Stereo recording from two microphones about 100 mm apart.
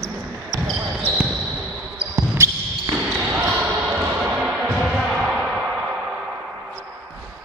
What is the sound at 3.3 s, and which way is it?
Basketball bounce, 15° right (ahead or behind).